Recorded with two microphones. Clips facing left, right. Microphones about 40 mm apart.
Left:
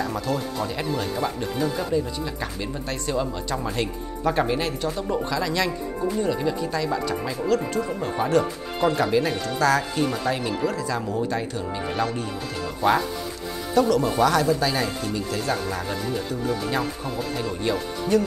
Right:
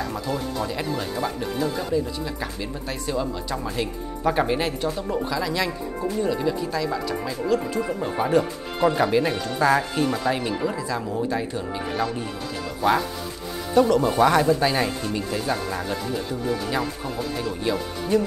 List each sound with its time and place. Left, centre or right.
0.0 s speech: centre
4.2 s speech: centre
4.8 s speech: centre
7.4 s speech: centre
12.8 s speech: centre
13.7 s speech: right
15.5 s speech: centre